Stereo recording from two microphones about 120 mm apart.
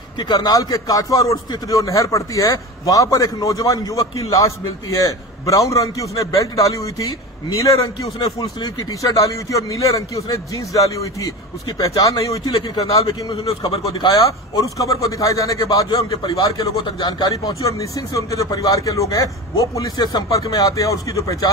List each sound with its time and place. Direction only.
0.2 s speech: 35° left (ahead or behind)
8.2 s speech: 35° left (ahead or behind)
12.5 s a man's voice: 50° left (ahead or behind)
17.6 s speech: 25° left (ahead or behind)